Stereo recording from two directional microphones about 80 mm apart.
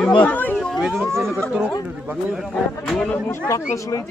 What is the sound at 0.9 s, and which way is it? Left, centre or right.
Speech, right.